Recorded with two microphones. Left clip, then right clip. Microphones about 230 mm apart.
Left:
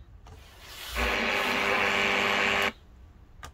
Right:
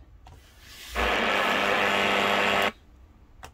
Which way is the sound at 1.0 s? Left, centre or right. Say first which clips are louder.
Right 3 dB; centre.